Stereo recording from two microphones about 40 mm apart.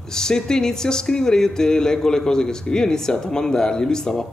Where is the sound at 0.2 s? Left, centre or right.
Centre.